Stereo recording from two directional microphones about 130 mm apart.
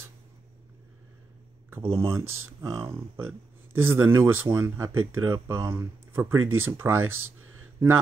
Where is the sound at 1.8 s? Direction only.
45° right (ahead or behind).